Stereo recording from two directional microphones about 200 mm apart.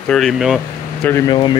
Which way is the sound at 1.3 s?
20° left (ahead or behind).